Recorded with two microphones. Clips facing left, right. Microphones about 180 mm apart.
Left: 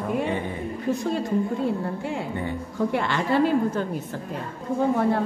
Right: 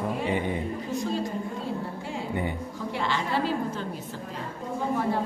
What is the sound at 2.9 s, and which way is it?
Speech, 55° left (ahead or behind).